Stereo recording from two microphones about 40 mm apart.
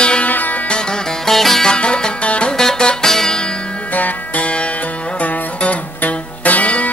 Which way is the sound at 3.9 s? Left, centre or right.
Left.